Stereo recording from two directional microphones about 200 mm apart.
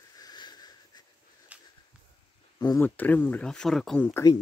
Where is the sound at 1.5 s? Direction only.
5° right (ahead or behind).